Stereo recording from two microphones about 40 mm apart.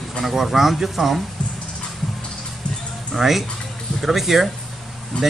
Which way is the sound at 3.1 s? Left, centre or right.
Centre.